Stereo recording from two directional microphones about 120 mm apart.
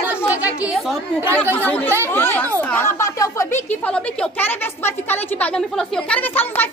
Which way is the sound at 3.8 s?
10° left (ahead or behind).